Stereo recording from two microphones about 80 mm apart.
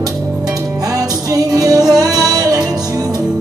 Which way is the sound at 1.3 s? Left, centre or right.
Right.